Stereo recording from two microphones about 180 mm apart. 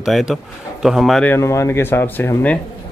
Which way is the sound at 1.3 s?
15° left (ahead or behind).